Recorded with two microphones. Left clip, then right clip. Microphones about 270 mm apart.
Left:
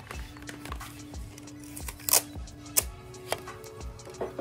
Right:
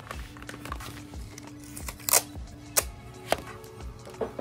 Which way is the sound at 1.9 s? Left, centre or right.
Centre.